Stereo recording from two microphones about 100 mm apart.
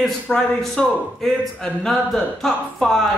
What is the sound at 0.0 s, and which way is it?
A man's voice, 5° left (ahead or behind).